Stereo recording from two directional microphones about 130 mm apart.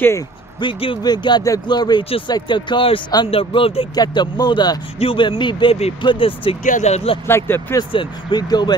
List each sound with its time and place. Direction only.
0.6 s speech: 40° left (ahead or behind)
2.0 s speech: 45° left (ahead or behind)
3.9 s speech: 30° left (ahead or behind)
4.9 s speech: 45° left (ahead or behind)
6.6 s speech: 70° left (ahead or behind)
7.2 s speech: 15° left (ahead or behind)
7.9 s speech: 35° left (ahead or behind)